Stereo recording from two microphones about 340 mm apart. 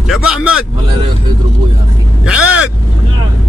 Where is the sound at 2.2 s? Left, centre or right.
Centre.